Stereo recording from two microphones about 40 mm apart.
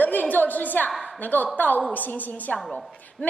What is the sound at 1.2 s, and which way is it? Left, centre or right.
A woman's voice, left.